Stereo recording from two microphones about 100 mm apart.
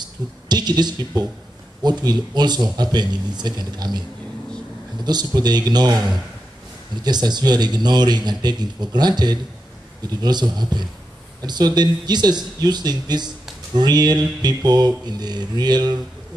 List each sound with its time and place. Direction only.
0.0 s a man's voice: 45° right (ahead or behind)
5.0 s a man's voice: 45° right (ahead or behind)